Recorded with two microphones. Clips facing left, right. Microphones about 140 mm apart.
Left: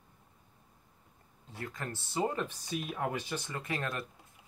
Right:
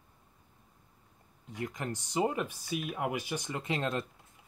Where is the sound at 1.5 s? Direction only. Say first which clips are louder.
Right 4 dB; 15° right (ahead or behind).